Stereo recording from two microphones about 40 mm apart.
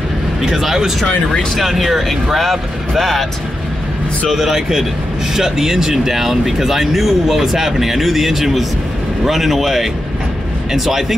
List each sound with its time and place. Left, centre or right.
0.4 s speech: centre
4.3 s speech: centre